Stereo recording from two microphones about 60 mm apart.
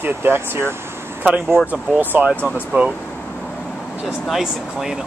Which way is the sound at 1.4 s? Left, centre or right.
Centre.